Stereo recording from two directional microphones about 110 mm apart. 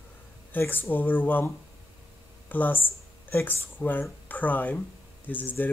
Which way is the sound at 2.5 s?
15° left (ahead or behind).